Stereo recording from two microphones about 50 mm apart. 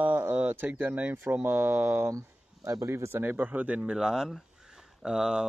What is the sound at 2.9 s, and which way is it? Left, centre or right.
Speech, right.